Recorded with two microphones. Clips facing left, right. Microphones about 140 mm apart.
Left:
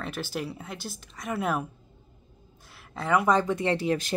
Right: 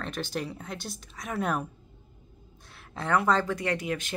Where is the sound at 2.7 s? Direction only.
Centre (ahead or behind).